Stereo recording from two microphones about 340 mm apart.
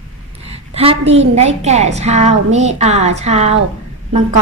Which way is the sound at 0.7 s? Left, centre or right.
Centre.